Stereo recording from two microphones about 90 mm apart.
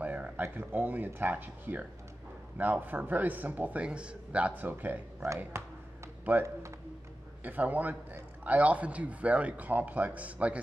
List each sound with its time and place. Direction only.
0.0 s a sound: 15° right (ahead or behind)
0.4 s speech: 20° right (ahead or behind)
7.4 s a man's voice: 20° right (ahead or behind)